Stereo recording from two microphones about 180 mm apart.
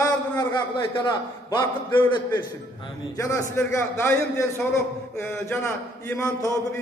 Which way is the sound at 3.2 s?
15° left (ahead or behind).